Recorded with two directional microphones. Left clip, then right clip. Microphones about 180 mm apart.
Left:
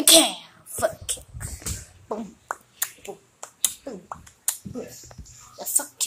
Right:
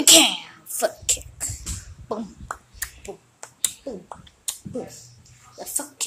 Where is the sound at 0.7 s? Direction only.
20° right (ahead or behind).